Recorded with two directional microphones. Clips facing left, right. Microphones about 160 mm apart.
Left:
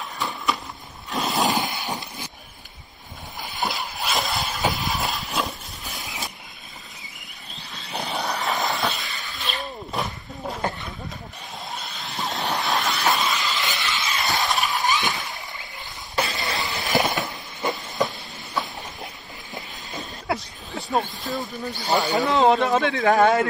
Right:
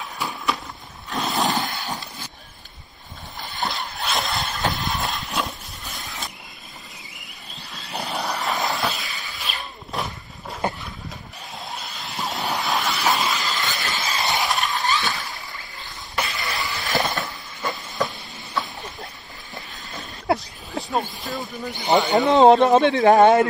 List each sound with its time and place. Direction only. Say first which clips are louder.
1.1 s a sound: even; centre (ahead or behind)
1.6 s a sound: left 1 dB; 20° left (ahead or behind)
3.5 s vehicle: even; centre (ahead or behind)
7.7 s vehicle: even; centre (ahead or behind)
11.7 s vehicle: even; centre (ahead or behind)
13.7 s vehicle: even; 40° right (ahead or behind)
14.4 s vehicle: even; centre (ahead or behind)
14.8 s a sound: even; 20° left (ahead or behind)
16.2 s vehicle: left 1 dB; 20° left (ahead or behind)
19.5 s train: left 2 dB; 20° left (ahead or behind)
20.3 s a sound: right 2 dB; centre (ahead or behind)
21.6 s speech: right 4 dB; 20° right (ahead or behind)